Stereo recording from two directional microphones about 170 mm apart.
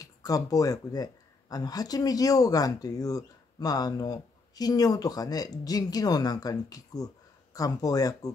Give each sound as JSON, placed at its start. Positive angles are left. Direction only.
{"t": 0.0, "sound": "speech", "side_deg": 20}